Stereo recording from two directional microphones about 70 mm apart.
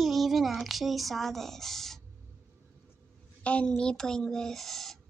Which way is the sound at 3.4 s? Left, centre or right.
Centre.